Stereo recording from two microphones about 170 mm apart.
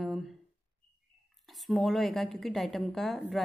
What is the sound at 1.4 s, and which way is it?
Speech, centre (ahead or behind).